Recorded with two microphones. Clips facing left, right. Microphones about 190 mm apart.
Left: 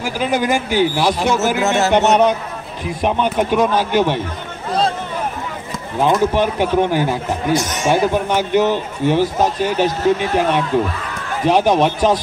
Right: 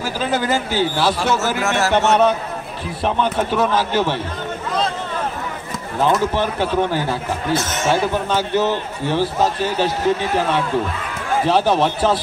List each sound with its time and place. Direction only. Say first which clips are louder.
0.0 s a man's voice: left 2 dB; 15° left (ahead or behind)
5.9 s a man's voice: left 3 dB; 15° left (ahead or behind)